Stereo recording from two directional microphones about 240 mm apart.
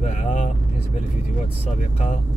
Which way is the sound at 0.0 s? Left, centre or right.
Left.